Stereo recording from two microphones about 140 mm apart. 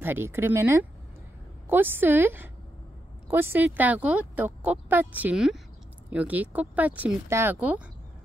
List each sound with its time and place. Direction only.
0.0 s speech: 15° right (ahead or behind)